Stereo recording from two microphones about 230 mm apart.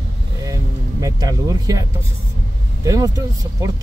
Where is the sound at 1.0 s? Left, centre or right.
Centre.